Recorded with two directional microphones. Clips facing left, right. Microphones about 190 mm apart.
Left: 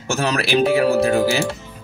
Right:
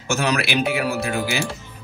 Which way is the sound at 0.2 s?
35° left (ahead or behind).